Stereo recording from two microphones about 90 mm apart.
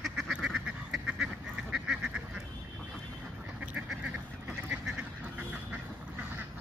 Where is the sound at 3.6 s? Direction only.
15° right (ahead or behind).